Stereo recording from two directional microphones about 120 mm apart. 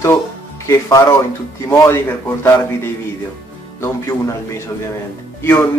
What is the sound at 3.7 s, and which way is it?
Speech, 25° left (ahead or behind).